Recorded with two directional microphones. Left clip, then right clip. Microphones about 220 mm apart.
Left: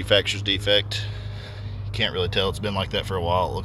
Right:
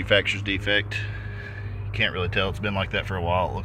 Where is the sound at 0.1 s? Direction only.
15° left (ahead or behind).